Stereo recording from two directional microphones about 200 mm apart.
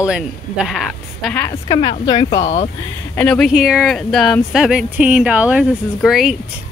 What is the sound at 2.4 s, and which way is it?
Speech, 35° left (ahead or behind).